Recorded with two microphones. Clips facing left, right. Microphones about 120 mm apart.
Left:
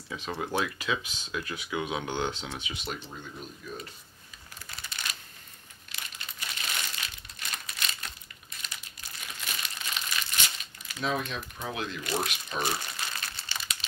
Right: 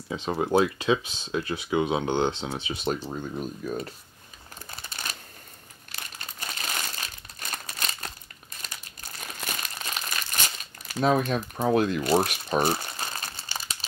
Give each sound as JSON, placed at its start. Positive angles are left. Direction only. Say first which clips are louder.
{"t": 0.1, "sound": "speech", "louder": "right 8 dB", "side_deg": -25}
{"t": 4.6, "sound": "crumpling", "louder": "right 2 dB", "side_deg": -40}